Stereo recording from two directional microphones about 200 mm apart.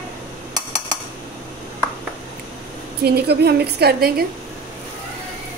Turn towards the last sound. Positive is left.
turn(degrees=-50)  # may be behind; listen again after turning